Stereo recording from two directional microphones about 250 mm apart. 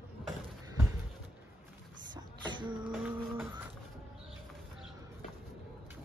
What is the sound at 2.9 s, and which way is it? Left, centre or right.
Music, centre.